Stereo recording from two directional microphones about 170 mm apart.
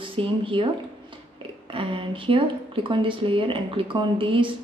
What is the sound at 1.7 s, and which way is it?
Speech, 30° right (ahead or behind).